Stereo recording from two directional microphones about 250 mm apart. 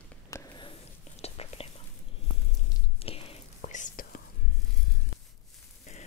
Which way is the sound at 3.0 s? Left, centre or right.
Left.